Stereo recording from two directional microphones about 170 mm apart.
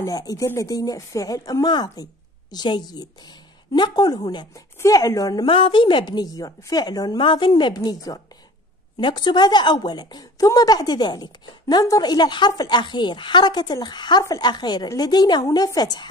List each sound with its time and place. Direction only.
0.0 s a woman's voice: 20° left (ahead or behind)